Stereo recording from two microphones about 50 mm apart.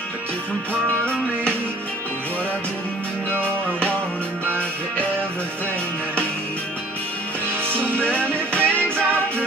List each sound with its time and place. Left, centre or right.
8.0 s music: left